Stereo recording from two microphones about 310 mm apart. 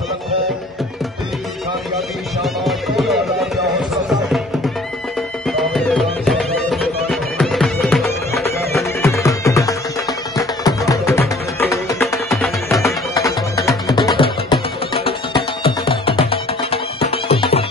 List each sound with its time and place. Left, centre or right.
2.4 s music: centre
5.5 s music: centre